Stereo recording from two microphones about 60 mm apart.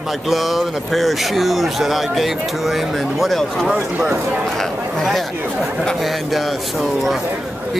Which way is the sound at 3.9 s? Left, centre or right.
Right.